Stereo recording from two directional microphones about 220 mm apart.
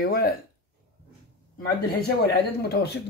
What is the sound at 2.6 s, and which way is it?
Speech, 50° left (ahead or behind).